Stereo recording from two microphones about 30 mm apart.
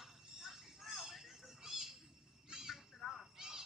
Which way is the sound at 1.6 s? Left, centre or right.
Centre.